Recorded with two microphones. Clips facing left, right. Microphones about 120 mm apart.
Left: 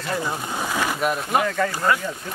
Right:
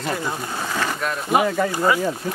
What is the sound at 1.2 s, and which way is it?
Speech, 5° right (ahead or behind).